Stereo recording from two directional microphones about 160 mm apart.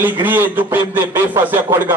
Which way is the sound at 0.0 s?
10° right (ahead or behind).